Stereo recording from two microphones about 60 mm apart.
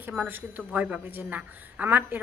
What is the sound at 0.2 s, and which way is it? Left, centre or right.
A woman's voice, right.